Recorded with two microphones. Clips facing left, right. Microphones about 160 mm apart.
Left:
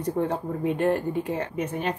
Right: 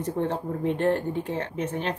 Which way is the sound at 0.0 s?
10° left (ahead or behind).